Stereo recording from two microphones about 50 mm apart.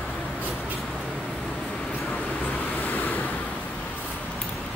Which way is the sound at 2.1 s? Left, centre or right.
Left.